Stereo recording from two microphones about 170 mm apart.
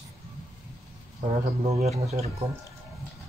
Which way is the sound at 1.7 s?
40° right (ahead or behind).